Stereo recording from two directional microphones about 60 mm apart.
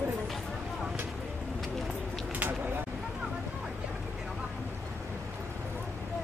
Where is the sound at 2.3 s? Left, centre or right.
Right.